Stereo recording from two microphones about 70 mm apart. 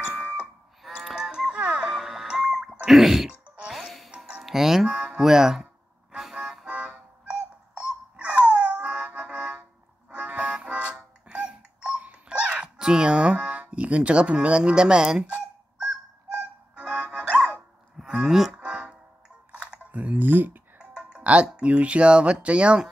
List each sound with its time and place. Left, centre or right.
0.0 s doorbell: centre
0.8 s music: centre
3.3 s music: centre
3.7 s music: centre
4.4 s speech: centre
6.1 s a sound: centre
8.2 s music: centre
17.9 s a sound: centre
18.6 s music: centre
19.5 s typing: centre
20.7 s speech: centre